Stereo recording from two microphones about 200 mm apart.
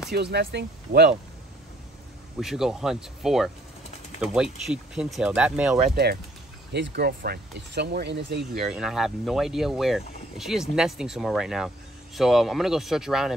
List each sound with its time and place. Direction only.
0.1 s speech: 55° right (ahead or behind)
2.4 s speech: centre (ahead or behind)
6.7 s speech: 55° right (ahead or behind)
8.7 s speech: centre (ahead or behind)